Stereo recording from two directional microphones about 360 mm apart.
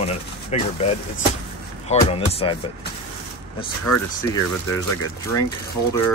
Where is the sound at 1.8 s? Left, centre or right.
Centre.